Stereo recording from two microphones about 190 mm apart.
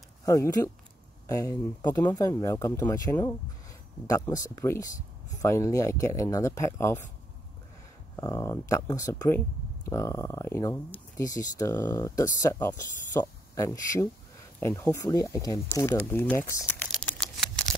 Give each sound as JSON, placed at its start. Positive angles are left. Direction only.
{"t": 0.2, "sound": "speech", "side_deg": 20}
{"t": 8.2, "sound": "speech", "side_deg": 15}